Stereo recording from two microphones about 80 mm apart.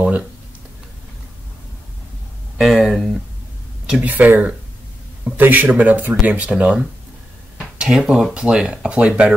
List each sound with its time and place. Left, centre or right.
2.5 s speech: centre
4.0 s speech: right